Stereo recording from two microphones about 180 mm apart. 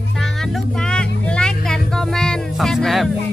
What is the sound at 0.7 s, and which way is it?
Music, 5° left (ahead or behind).